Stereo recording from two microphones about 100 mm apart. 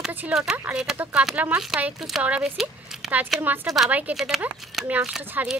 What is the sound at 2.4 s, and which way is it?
Speech, 5° right (ahead or behind).